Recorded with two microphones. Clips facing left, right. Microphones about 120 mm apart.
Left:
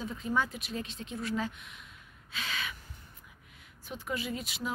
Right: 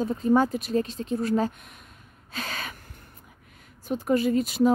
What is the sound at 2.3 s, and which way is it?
Gasp, 45° right (ahead or behind).